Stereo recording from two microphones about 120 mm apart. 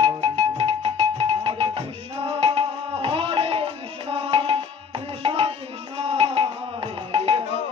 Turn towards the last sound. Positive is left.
turn(degrees=-50)  # may be behind; listen again after turning